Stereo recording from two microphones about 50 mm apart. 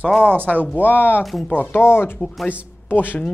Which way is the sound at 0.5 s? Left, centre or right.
Left.